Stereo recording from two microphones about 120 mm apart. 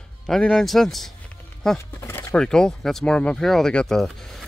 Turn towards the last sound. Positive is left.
turn(degrees=5)  # may be behind; listen again after turning